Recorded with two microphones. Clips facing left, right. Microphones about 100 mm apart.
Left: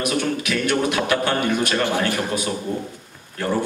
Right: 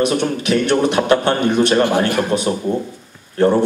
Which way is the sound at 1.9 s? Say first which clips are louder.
Right 5 dB; 45° right (ahead or behind).